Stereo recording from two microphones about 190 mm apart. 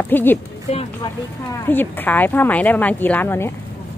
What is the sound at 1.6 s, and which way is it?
Speech, 10° left (ahead or behind).